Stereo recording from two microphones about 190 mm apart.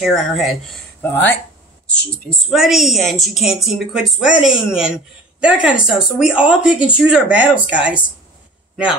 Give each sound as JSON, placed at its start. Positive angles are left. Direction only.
{"t": 0.0, "sound": "a woman's voice", "side_deg": 0}